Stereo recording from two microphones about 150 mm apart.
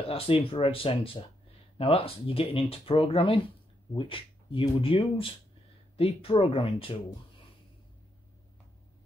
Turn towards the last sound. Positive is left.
turn(degrees=35)  # may be behind; listen again after turning